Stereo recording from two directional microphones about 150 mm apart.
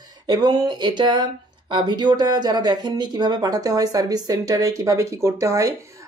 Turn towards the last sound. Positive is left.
turn(degrees=-20)  # may be behind; listen again after turning